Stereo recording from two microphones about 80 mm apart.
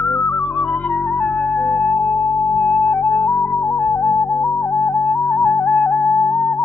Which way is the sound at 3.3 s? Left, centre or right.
Centre.